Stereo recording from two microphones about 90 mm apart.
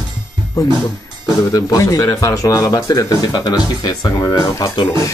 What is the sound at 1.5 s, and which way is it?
Speech, 40° left (ahead or behind).